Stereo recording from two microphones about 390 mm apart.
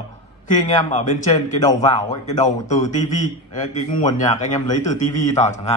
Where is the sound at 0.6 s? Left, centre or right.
Centre.